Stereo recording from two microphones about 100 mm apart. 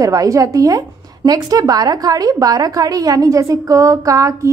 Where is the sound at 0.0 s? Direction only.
35° right (ahead or behind).